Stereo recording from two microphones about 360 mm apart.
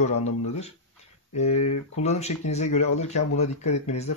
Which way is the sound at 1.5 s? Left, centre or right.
Left.